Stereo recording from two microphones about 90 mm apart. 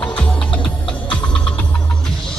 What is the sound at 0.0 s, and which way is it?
Music, 10° left (ahead or behind).